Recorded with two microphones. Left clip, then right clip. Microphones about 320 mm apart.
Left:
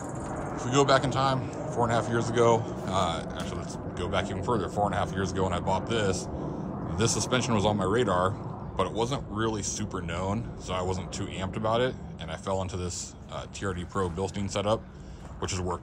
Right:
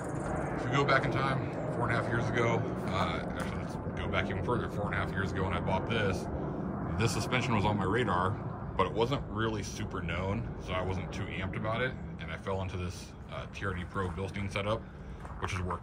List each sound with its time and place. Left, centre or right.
0.6 s speech: centre